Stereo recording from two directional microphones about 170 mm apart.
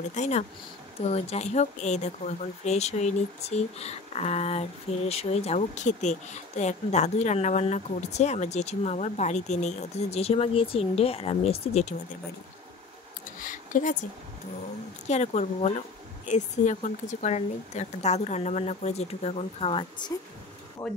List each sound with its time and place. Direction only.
0.1 s speech: 40° left (ahead or behind)
13.4 s a sound: 50° left (ahead or behind)
15.0 s speech: 40° left (ahead or behind)
20.8 s speech: 20° left (ahead or behind)